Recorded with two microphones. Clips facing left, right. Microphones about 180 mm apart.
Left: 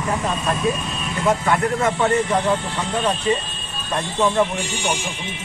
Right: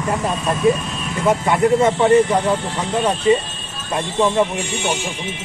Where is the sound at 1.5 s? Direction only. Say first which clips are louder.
Right 5 dB; 25° right (ahead or behind).